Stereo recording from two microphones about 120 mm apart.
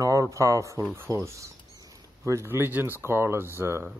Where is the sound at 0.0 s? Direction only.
25° right (ahead or behind).